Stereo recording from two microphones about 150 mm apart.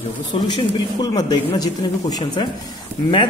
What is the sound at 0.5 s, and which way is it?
Speech, 30° left (ahead or behind).